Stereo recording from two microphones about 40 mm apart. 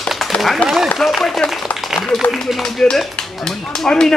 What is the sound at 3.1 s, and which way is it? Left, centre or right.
A man's voice, centre.